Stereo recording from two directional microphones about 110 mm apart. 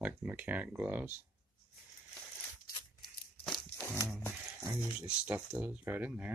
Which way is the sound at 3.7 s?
20° left (ahead or behind).